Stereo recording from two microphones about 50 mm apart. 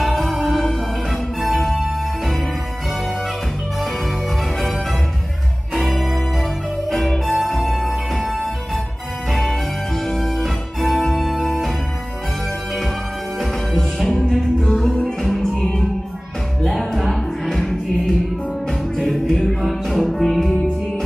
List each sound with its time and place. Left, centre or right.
0.0 s music: centre
5.8 s music: centre
13.7 s music: centre